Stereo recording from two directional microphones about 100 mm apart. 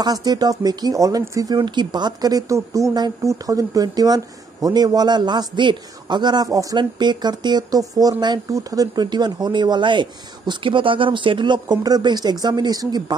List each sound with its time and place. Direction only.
0.0 s a woman's voice: 40° right (ahead or behind)
1.5 s a woman's voice: 45° right (ahead or behind)
6.8 s speech: 50° right (ahead or behind)